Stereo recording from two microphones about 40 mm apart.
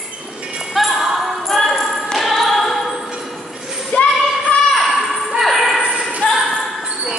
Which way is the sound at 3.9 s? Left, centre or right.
Left.